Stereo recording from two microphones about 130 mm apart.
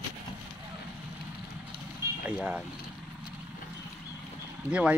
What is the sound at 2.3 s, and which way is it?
Speech, 10° right (ahead or behind).